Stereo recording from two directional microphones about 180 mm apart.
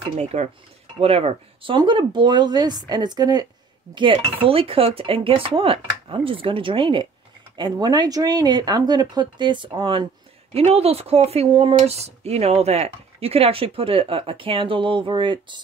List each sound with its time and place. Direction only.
0.2 s speech: 35° right (ahead or behind)